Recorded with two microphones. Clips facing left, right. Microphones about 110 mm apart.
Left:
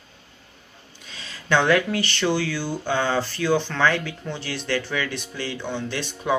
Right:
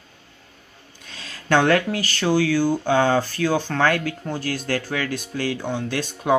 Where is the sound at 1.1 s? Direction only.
50° right (ahead or behind).